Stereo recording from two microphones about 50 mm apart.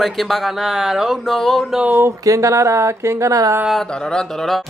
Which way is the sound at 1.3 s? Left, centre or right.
Centre.